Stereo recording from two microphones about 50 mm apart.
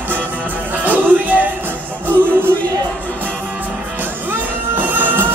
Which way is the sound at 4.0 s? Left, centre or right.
Right.